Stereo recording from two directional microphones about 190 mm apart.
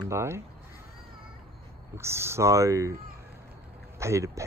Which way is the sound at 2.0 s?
15° right (ahead or behind).